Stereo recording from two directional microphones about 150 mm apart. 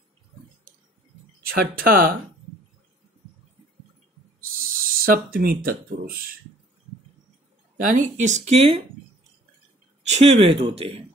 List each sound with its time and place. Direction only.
1.4 s speech: 75° right (ahead or behind)
4.6 s speech: 70° right (ahead or behind)
7.7 s speech: 60° right (ahead or behind); by 8.8 s 40° right (ahead or behind)
10.0 s speech: 45° right (ahead or behind)